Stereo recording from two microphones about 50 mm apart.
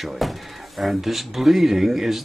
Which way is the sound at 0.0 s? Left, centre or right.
Centre.